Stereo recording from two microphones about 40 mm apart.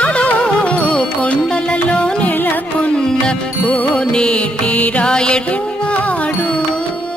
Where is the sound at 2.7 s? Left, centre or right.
Left.